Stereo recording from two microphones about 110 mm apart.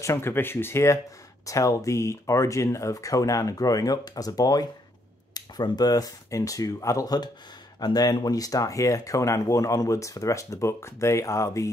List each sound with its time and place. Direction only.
0.0 s speech: 25° left (ahead or behind)